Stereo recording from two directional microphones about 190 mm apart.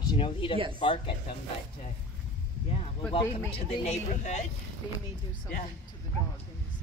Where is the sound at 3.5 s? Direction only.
35° left (ahead or behind).